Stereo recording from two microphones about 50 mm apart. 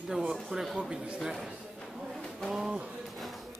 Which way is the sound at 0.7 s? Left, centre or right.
Centre.